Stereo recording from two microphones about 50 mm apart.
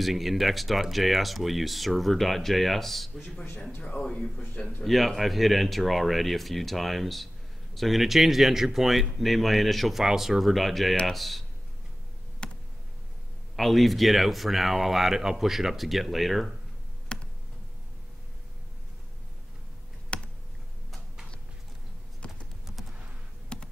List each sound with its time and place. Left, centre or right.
0.0 s speech: centre
3.7 s speech: left
4.0 s speech: centre
4.8 s speech: centre
12.4 s a sound: centre
13.6 s speech: centre
17.1 s computer keyboard: centre
20.1 s computer keyboard: left
22.2 s computer keyboard: left
23.5 s tap: centre